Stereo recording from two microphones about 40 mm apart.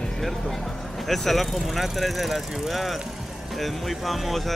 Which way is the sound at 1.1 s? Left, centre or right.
Centre.